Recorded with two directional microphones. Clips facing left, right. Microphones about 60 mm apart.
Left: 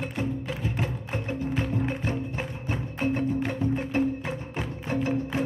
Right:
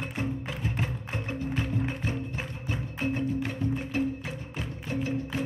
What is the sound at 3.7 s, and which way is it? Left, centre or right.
Music, left.